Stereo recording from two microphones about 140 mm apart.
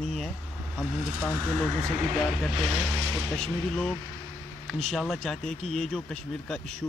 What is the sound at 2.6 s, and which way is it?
Speech, centre (ahead or behind).